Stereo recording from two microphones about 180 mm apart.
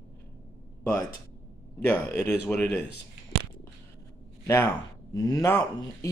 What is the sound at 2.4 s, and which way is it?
Speech, 15° left (ahead or behind).